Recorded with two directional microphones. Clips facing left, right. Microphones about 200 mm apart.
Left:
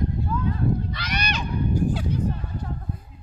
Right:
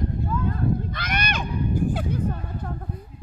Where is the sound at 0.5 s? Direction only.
50° right (ahead or behind).